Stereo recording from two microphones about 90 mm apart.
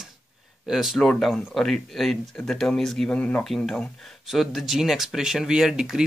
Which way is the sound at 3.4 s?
5° left (ahead or behind).